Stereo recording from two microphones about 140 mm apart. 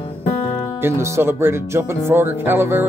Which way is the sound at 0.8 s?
20° right (ahead or behind).